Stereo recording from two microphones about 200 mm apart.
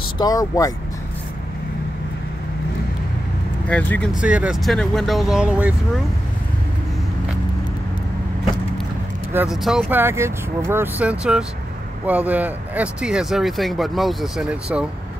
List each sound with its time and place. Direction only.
0.2 s speech: 20° left (ahead or behind)
3.6 s speech: 5° left (ahead or behind)
4.2 s speech: 5° right (ahead or behind)
9.3 s speech: 5° right (ahead or behind)